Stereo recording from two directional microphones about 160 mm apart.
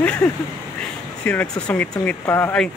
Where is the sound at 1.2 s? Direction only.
10° left (ahead or behind).